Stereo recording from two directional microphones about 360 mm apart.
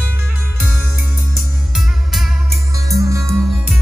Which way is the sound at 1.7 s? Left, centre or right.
Centre.